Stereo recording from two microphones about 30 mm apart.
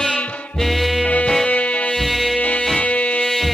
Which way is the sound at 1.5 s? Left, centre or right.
Left.